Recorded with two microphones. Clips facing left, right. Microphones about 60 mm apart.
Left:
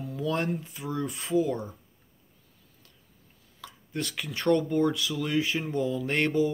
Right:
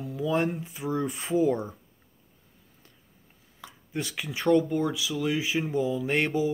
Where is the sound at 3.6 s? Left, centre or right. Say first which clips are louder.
Even; centre.